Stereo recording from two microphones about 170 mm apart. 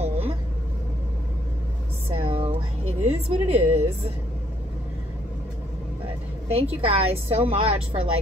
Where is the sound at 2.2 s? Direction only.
35° right (ahead or behind).